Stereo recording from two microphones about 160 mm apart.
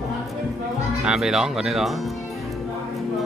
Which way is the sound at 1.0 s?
5° right (ahead or behind).